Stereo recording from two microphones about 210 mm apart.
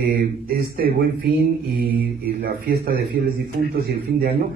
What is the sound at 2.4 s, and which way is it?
Speech, 45° right (ahead or behind).